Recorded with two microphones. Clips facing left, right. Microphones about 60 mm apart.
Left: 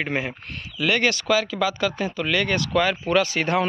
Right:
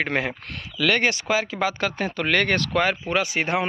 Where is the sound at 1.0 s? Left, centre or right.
Right.